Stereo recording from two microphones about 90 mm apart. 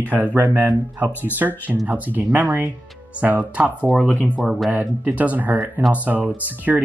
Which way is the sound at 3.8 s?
10° left (ahead or behind).